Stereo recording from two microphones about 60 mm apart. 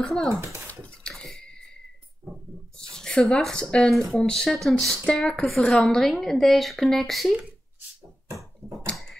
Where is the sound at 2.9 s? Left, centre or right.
Centre.